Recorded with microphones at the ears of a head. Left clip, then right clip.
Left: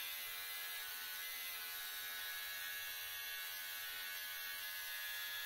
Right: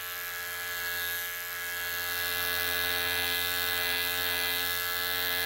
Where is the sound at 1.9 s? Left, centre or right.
Right.